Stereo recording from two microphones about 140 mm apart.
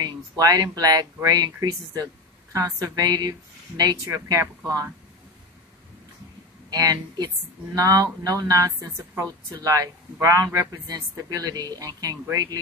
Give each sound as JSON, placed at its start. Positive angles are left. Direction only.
{"t": 0.0, "sound": "a man's voice", "side_deg": -25}
{"t": 6.7, "sound": "a man's voice", "side_deg": -25}